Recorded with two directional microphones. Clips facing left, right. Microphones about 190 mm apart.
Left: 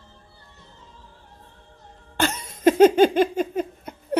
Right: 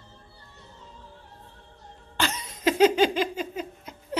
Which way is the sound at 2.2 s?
50° left (ahead or behind).